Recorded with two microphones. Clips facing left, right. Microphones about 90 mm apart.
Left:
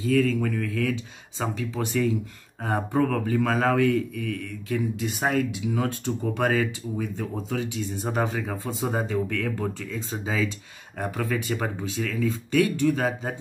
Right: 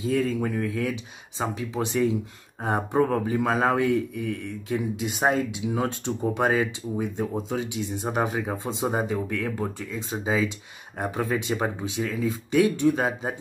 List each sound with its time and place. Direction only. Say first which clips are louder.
0.0 s speech: left 2 dB; 25° right (ahead or behind)